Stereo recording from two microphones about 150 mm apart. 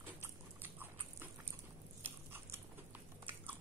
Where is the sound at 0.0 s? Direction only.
15° right (ahead or behind).